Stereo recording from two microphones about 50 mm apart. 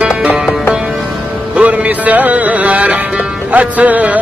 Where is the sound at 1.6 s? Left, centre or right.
Right.